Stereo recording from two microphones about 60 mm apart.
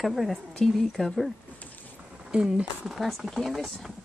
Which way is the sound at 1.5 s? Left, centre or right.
Left.